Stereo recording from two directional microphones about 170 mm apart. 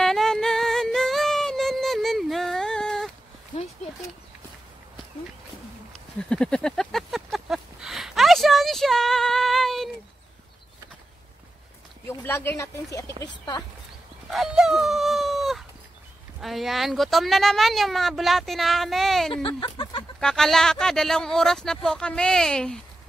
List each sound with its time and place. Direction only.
0.0 s music: centre (ahead or behind)
6.1 s a sound: 5° left (ahead or behind)
12.1 s speech: 15° left (ahead or behind)
14.2 s dog: centre (ahead or behind)
16.3 s speech: centre (ahead or behind)
19.3 s speech: 30° left (ahead or behind)
20.2 s speech: 5° left (ahead or behind)